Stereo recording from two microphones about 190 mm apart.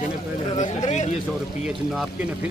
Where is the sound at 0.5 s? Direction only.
40° left (ahead or behind).